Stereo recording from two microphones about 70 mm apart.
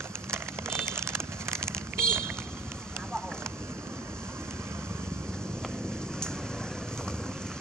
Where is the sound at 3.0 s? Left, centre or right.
Centre.